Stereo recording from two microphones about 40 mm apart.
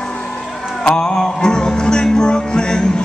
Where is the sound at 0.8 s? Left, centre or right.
Left.